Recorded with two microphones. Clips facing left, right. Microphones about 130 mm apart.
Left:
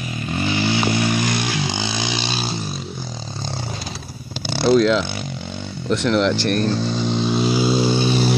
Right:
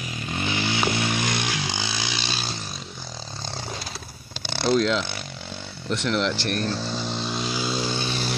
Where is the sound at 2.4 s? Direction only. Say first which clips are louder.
Left 7 dB; 5° left (ahead or behind).